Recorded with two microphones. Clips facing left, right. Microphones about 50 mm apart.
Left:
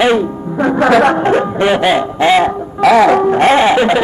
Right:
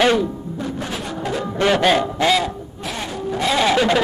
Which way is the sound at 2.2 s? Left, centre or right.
Left.